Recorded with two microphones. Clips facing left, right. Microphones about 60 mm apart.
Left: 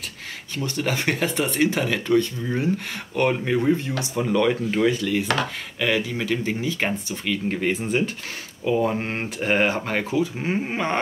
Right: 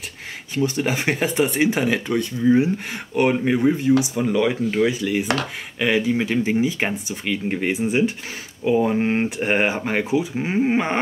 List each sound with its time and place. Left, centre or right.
0.6 s speech: centre
4.1 s speech: centre